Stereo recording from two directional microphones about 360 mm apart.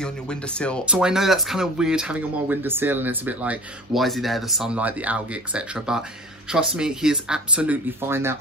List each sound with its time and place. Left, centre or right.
0.0 s speech: centre